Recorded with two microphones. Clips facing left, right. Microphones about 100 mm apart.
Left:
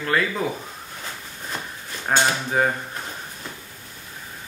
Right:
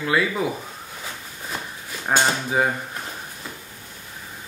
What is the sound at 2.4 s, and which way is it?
Drawer open or close, 5° right (ahead or behind).